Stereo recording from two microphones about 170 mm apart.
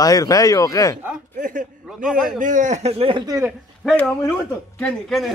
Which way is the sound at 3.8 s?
5° left (ahead or behind).